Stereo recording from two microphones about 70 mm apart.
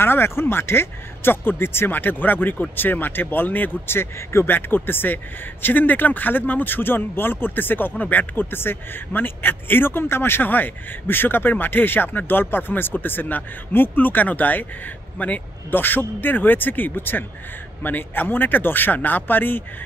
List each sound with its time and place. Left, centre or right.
0.0 s a man's voice: left